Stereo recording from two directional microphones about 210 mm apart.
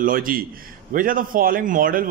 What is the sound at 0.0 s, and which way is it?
A man's voice, 40° right (ahead or behind).